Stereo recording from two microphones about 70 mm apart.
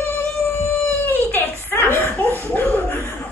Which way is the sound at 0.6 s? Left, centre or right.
Left.